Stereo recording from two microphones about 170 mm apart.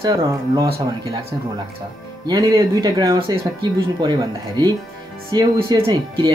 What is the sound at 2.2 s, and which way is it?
Speech, 20° right (ahead or behind).